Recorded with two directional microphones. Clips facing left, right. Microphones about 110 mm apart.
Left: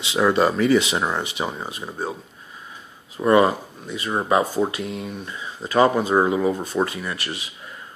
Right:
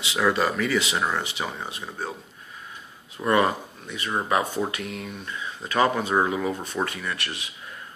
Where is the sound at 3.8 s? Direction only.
30° left (ahead or behind).